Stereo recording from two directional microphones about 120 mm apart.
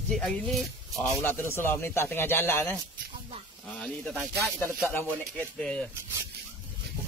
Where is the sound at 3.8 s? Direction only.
5° left (ahead or behind).